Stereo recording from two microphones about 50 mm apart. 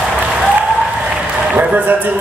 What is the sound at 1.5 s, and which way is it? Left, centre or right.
Speech, right.